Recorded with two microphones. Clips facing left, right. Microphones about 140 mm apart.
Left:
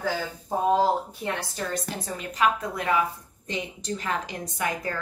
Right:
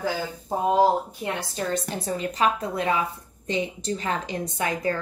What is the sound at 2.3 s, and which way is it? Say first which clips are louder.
A woman's voice: left 1 dB; 30° right (ahead or behind).